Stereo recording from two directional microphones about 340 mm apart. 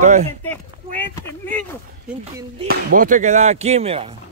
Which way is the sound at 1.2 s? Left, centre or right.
Centre.